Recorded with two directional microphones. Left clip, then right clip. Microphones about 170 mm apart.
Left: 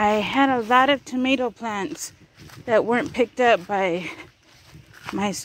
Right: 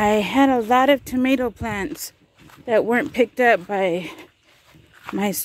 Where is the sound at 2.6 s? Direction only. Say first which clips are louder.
Right 1 dB; 30° right (ahead or behind).